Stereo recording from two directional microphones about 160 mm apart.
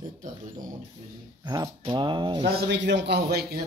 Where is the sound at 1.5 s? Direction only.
25° right (ahead or behind).